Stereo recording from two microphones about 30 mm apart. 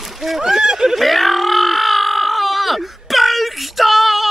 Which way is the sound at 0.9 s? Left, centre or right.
Centre.